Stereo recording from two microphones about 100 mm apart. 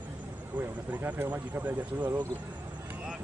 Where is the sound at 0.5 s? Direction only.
15° right (ahead or behind).